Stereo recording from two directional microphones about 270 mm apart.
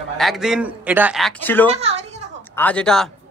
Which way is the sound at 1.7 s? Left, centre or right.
Right.